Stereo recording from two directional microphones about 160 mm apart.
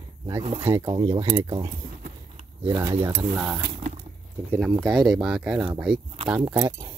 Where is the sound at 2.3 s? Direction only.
35° right (ahead or behind).